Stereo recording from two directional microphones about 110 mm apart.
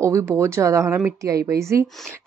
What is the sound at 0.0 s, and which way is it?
Speech, 25° right (ahead or behind).